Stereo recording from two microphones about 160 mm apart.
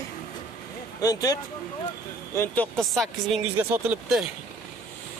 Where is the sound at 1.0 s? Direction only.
25° left (ahead or behind).